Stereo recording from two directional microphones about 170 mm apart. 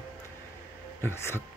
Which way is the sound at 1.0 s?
15° left (ahead or behind).